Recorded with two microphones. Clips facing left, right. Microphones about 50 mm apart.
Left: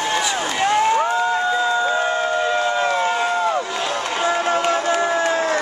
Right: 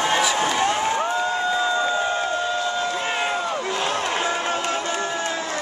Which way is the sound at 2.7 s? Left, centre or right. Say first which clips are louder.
Left 6 dB; left.